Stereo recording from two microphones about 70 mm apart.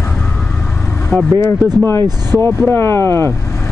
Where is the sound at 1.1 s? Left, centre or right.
Left.